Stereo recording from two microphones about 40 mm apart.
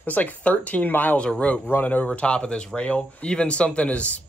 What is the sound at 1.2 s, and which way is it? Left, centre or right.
Speech, left.